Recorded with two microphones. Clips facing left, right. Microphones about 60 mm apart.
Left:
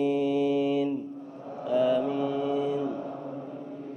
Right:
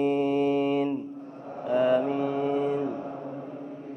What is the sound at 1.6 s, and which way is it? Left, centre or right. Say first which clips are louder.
Mantra: right 1 dB; right.